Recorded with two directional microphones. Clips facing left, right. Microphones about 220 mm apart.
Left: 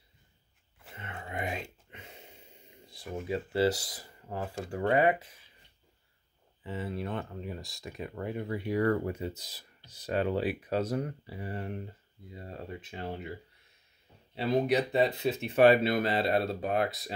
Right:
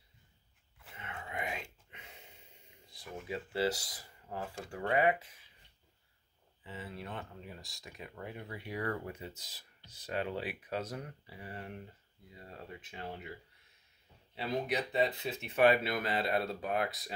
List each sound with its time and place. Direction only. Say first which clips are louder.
0.8 s a sound: left 3 dB; 35° left (ahead or behind)
2.9 s speech: left 7 dB; 30° left (ahead or behind)
6.6 s speech: left 9 dB; 40° left (ahead or behind)
14.3 s speech: left 8 dB; 35° left (ahead or behind)